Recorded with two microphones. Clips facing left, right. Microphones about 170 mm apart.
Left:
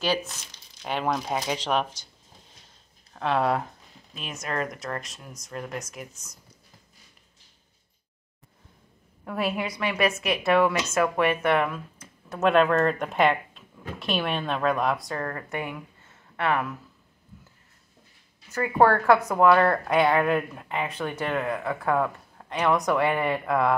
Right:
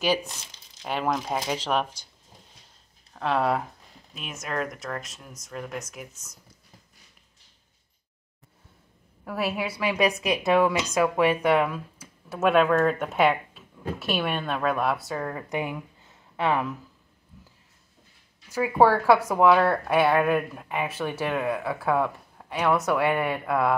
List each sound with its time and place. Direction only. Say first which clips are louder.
0.8 s a woman's voice: even; 5° right (ahead or behind)
3.1 s a woman's voice: even; centre (ahead or behind)
9.2 s a woman's voice: even; 5° right (ahead or behind)
18.5 s a woman's voice: right 1 dB; 10° right (ahead or behind)